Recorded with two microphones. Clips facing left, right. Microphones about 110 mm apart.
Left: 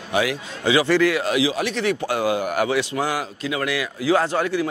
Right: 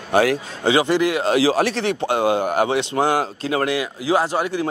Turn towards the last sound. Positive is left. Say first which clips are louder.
# even
turn(degrees=-15)  # may be behind; listen again after turning